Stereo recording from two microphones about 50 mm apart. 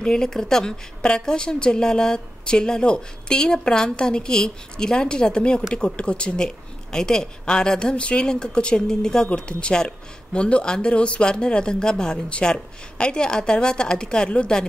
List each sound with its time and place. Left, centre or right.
0.0 s a woman's voice: centre